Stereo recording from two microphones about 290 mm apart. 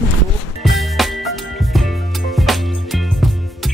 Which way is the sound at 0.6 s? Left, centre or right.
Centre.